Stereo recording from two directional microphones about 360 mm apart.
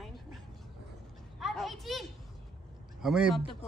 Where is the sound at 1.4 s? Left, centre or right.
Centre.